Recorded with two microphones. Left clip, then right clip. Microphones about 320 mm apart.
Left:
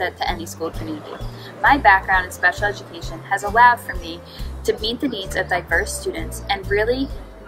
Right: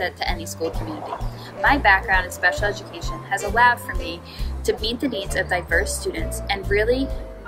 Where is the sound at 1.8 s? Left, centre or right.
Centre.